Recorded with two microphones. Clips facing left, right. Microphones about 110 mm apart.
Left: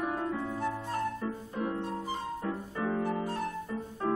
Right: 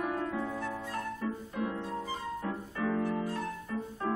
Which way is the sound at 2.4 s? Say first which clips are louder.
Left 1 dB; 30° left (ahead or behind).